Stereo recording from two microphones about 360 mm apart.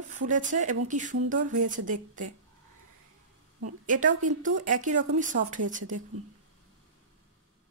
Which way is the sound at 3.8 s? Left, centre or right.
Right.